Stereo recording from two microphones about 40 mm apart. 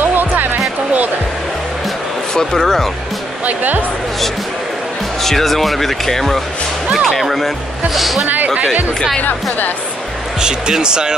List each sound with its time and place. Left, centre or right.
0.0 s music: right
2.3 s speech: centre
3.4 s speech: right
5.2 s speech: centre
10.4 s speech: centre